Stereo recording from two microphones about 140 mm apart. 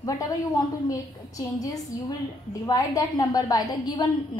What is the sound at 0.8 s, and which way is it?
A woman's voice, 25° left (ahead or behind).